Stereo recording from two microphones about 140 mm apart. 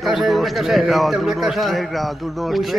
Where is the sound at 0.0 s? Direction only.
Centre (ahead or behind).